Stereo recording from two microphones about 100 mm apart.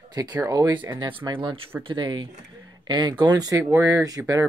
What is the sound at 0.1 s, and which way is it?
Speech, 40° right (ahead or behind).